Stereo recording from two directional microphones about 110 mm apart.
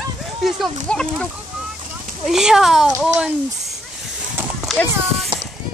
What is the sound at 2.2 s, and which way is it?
Speech, 5° right (ahead or behind).